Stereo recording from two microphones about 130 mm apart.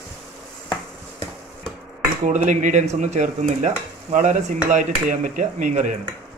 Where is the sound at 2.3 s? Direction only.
70° right (ahead or behind).